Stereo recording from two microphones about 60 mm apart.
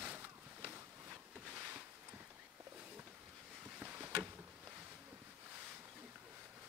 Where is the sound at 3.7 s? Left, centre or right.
Right.